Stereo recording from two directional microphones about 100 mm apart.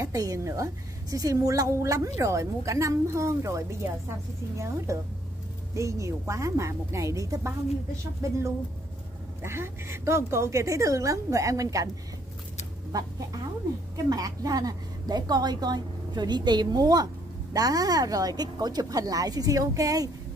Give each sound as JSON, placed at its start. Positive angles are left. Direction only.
{"t": 0.0, "sound": "a woman's voice", "side_deg": -35}
{"t": 12.9, "sound": "a woman's voice", "side_deg": -35}